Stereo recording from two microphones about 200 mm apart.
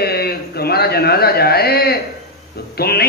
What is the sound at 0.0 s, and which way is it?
A man's voice, 50° left (ahead or behind).